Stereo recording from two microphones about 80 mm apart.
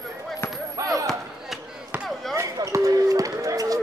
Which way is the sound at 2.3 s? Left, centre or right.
Right.